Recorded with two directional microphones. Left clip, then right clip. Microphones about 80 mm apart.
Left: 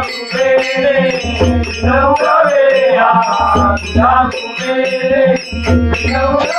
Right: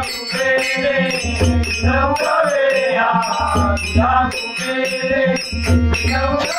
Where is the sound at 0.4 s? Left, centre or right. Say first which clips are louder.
Left 5 dB; centre.